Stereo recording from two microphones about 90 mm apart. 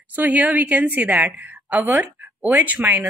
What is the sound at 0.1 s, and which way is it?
A woman's voice, 15° right (ahead or behind).